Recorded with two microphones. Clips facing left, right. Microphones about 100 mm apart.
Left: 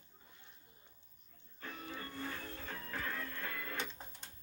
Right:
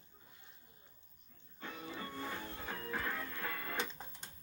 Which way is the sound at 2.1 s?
20° right (ahead or behind).